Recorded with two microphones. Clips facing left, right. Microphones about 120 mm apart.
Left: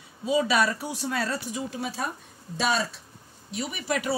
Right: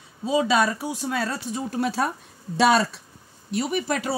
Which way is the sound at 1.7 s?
70° right (ahead or behind).